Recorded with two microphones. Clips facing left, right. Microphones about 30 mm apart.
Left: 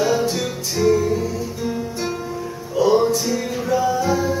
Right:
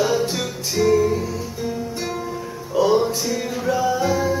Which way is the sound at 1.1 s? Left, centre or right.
Centre.